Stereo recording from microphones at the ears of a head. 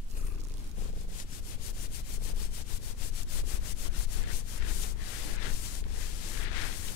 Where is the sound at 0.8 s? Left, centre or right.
Left.